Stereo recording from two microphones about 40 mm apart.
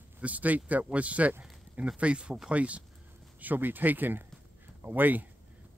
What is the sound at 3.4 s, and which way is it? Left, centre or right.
Speech, right.